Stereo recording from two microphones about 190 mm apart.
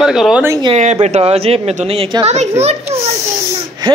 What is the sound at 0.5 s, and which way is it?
Speech, 25° right (ahead or behind).